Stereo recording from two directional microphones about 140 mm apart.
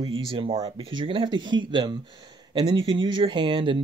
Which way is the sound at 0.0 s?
40° right (ahead or behind).